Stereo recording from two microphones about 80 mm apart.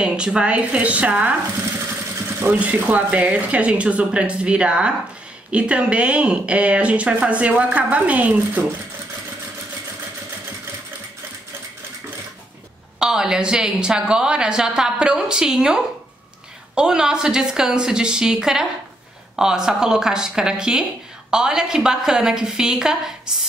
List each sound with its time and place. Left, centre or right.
0.0 s speech: centre
2.4 s speech: right
13.0 s speech: centre